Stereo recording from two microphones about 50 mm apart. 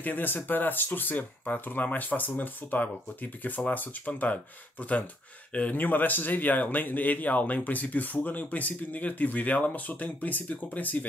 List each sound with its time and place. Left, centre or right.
0.0 s speech: left